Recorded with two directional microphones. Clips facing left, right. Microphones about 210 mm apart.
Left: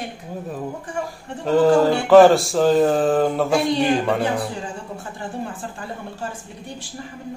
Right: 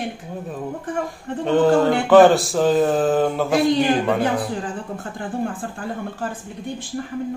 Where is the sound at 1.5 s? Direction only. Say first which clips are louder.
Left 1 dB; centre (ahead or behind).